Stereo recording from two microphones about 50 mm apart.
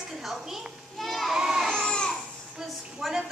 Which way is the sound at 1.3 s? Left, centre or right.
Centre.